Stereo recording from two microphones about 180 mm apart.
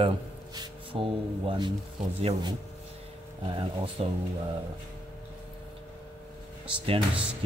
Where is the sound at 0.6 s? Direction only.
30° right (ahead or behind).